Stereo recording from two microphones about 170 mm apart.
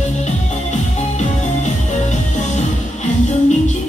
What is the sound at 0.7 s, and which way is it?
Music, 45° left (ahead or behind).